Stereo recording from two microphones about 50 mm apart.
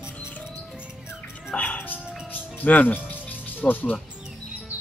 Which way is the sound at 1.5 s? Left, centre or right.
Left.